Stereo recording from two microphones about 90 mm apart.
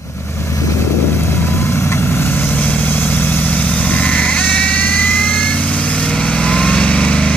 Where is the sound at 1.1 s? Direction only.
25° left (ahead or behind).